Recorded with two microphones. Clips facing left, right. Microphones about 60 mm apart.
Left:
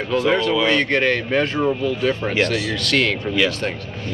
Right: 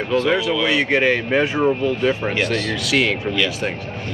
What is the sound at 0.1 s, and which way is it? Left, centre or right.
Speech, centre.